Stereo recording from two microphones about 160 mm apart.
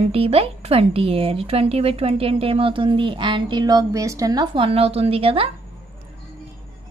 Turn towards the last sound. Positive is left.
turn(degrees=-35)  # may be behind; listen again after turning